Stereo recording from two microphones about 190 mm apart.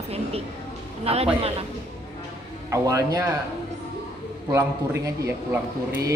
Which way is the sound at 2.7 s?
15° right (ahead or behind).